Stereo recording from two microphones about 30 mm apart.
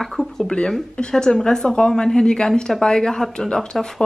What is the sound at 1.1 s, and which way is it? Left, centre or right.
A woman's voice, centre.